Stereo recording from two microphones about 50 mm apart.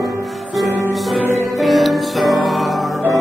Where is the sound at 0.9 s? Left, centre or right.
Centre.